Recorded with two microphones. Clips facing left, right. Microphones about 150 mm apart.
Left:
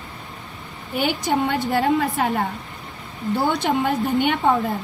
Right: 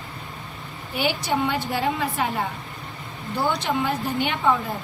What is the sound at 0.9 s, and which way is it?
A woman's voice, 50° left (ahead or behind).